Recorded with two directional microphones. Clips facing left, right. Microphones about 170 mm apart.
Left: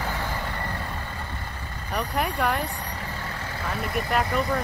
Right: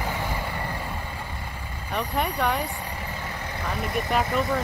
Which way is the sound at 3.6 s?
Centre (ahead or behind).